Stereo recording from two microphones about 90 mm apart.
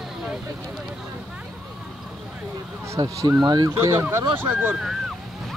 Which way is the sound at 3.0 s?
45° right (ahead or behind).